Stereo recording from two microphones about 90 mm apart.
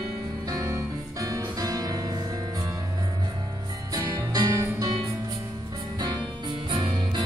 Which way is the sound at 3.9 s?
45° right (ahead or behind).